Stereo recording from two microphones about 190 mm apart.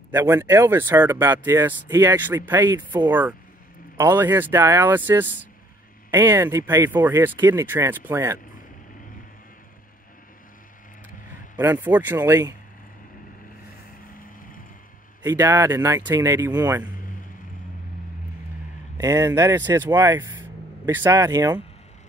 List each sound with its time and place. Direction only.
0.1 s speech: 10° right (ahead or behind)
11.5 s speech: 10° right (ahead or behind)
15.2 s speech: 15° right (ahead or behind)
16.8 s vehicle: 45° left (ahead or behind)
18.9 s speech: 15° right (ahead or behind)